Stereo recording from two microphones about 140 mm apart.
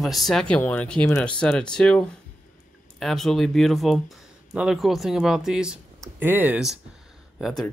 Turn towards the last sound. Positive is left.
turn(degrees=0)  # may be behind; listen again after turning